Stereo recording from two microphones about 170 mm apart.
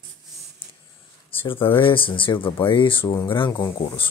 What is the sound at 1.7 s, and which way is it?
Speech, 30° left (ahead or behind).